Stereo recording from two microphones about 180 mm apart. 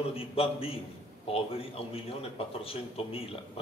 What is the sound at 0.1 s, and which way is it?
A man's voice, 30° left (ahead or behind).